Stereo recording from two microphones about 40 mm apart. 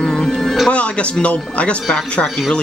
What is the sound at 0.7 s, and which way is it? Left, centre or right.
Speech, left.